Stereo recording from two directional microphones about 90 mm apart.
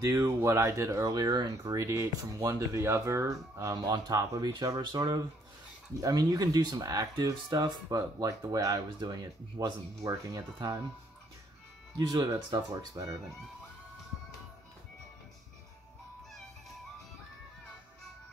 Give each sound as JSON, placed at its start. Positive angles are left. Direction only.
{"t": 0.0, "sound": "speech", "side_deg": -35}
{"t": 1.8, "sound": "speech", "side_deg": -30}
{"t": 4.4, "sound": "speech", "side_deg": -55}
{"t": 4.6, "sound": "speech", "side_deg": -40}
{"t": 12.4, "sound": "speech", "side_deg": -40}